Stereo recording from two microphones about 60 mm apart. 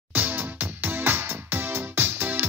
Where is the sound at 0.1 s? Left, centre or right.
Right.